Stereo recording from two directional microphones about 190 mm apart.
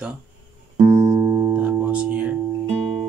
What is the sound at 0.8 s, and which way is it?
Music, 15° right (ahead or behind).